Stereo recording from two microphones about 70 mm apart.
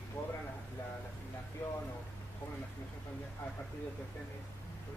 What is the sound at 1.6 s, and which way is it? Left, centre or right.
Speech, left.